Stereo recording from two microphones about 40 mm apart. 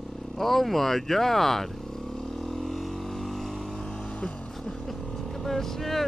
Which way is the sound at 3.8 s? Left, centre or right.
Centre.